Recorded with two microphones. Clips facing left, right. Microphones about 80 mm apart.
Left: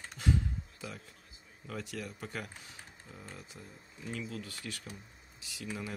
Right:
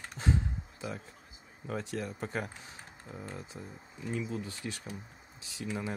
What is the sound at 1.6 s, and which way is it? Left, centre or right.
Speech, right.